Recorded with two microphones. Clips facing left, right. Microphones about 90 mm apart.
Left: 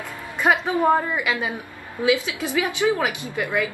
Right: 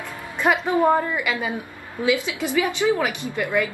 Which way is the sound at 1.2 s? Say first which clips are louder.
Left 1 dB; 15° left (ahead or behind).